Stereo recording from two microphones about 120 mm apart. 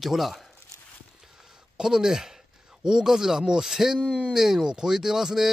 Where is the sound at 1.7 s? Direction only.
5° right (ahead or behind).